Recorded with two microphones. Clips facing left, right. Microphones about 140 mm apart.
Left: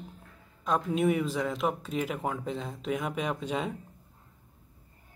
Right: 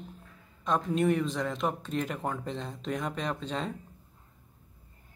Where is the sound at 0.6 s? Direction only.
5° left (ahead or behind).